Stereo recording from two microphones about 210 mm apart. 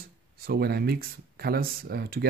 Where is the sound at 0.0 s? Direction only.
45° right (ahead or behind).